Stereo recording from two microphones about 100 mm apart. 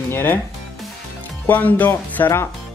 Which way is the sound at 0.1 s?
20° left (ahead or behind).